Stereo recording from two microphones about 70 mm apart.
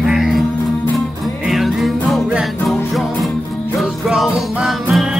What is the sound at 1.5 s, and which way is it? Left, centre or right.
Music, centre.